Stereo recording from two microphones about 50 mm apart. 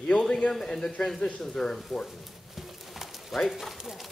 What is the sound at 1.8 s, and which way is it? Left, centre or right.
Horse, centre.